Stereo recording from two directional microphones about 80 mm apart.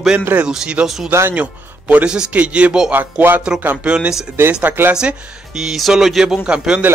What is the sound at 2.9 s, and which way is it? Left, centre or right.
Speech, right.